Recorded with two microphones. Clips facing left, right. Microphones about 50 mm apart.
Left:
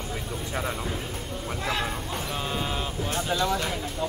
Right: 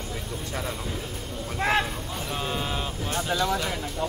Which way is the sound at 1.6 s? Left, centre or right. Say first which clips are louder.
Right 6 dB; right.